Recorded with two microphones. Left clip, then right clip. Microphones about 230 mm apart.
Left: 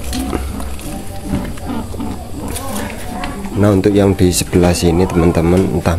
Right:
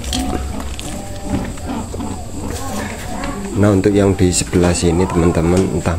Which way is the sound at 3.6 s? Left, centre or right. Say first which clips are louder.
Left 1 dB; centre.